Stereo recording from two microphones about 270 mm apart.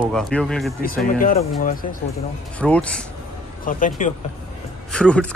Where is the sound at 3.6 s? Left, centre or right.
Left.